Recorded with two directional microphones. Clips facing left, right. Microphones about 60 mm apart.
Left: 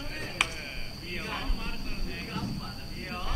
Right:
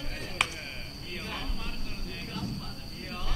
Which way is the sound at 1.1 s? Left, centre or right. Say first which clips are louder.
Left 2 dB; left.